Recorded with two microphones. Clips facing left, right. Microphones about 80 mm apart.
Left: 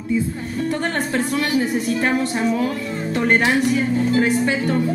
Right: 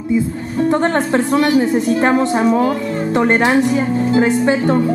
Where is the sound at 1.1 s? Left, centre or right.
Right.